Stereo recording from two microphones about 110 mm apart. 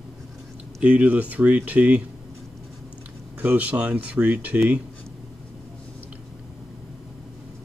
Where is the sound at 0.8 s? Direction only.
15° right (ahead or behind).